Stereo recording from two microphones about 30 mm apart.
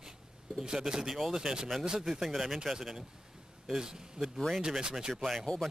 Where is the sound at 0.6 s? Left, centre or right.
Right.